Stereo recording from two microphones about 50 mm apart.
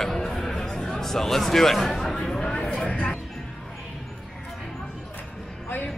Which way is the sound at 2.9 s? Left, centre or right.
Left.